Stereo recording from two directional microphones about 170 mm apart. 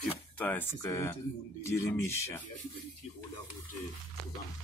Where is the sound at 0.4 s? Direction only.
10° left (ahead or behind).